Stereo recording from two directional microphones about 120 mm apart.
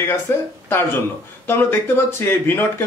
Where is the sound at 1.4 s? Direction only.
20° left (ahead or behind).